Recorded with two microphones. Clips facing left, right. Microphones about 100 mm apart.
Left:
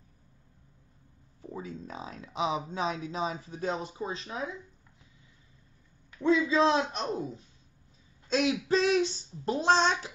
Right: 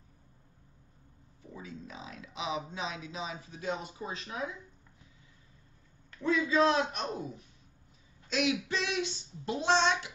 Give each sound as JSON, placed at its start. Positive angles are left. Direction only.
{"t": 1.5, "sound": "speech", "side_deg": 40}
{"t": 6.2, "sound": "a man's voice", "side_deg": 25}